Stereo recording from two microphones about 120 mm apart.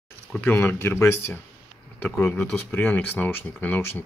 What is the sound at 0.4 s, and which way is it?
Speech, 15° left (ahead or behind).